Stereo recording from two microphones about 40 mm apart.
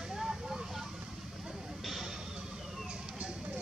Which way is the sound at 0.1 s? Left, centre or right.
Centre.